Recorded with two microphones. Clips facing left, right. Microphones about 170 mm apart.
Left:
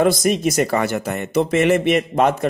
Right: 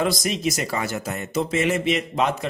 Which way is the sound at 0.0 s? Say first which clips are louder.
Left 7 dB; 55° left (ahead or behind).